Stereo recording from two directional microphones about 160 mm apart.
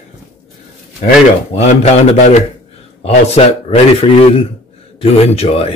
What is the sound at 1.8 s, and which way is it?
A man's voice, 45° left (ahead or behind).